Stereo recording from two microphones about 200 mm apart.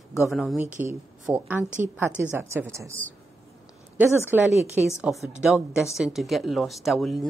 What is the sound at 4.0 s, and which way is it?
Speech, 10° right (ahead or behind).